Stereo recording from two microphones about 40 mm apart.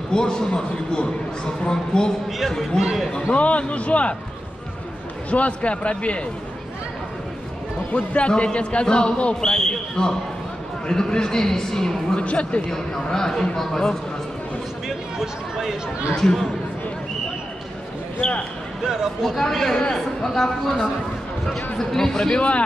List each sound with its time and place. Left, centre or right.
0.1 s a man's voice: centre
2.5 s speech: centre
3.3 s a man's voice: left
5.3 s a man's voice: left
7.9 s a man's voice: left; by 12.2 s centre
12.2 s a man's voice: left
12.7 s speech: centre
15.1 s a sound: centre
16.2 s speech: centre
18.9 s speech: centre
19.9 s speech: centre
21.7 s speech: centre
22.3 s a man's voice: left